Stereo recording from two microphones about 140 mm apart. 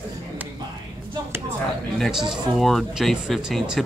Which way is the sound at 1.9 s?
Centre (ahead or behind).